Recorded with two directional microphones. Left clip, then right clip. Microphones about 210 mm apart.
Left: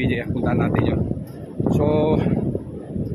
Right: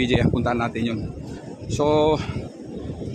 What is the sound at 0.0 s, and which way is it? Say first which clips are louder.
Speech: right 2 dB; 20° right (ahead or behind).